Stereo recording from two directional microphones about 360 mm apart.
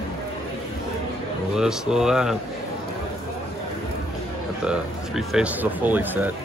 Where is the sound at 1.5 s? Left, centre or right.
Centre.